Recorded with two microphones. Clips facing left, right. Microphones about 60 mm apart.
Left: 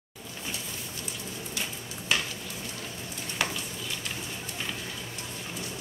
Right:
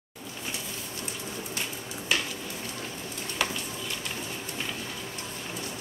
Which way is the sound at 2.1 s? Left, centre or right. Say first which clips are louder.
Even; centre.